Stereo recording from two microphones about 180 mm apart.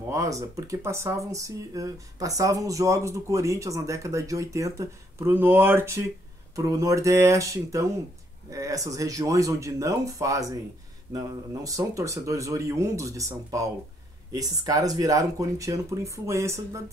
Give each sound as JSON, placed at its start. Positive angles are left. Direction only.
{"t": 0.1, "sound": "speech", "side_deg": -15}